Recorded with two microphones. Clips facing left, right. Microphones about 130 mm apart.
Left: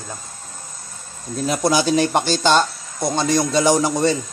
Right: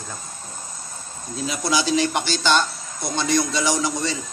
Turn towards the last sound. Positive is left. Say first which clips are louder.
# left 7 dB
turn(degrees=50)  # may be behind; listen again after turning